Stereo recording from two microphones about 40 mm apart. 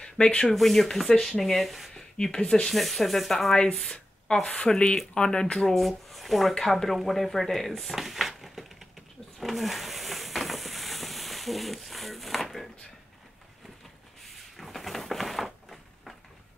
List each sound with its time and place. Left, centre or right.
0.5 s speech: centre
1.1 s speech: left
1.4 s speech: centre
2.0 s a sound: centre
2.4 s speech: left
2.7 s speech: centre
4.4 s speech: centre
5.7 s speech: centre
7.9 s a sound: centre
14.6 s a sound: centre